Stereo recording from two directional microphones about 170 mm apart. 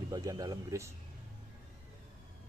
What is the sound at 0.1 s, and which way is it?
Speech, 20° right (ahead or behind).